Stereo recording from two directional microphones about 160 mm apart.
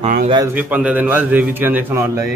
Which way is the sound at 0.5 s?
10° right (ahead or behind).